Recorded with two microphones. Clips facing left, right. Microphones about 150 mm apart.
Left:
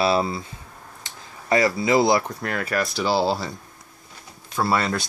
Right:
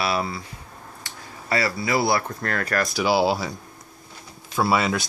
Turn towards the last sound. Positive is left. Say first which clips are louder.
# right 1 dB
turn(degrees=-5)  # may be behind; listen again after turning